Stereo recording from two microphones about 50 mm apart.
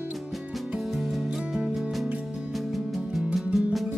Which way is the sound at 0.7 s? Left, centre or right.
Centre.